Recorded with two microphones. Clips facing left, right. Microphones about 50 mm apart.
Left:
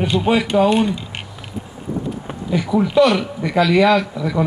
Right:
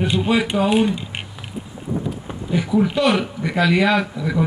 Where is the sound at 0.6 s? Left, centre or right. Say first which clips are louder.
Left 1 dB; centre.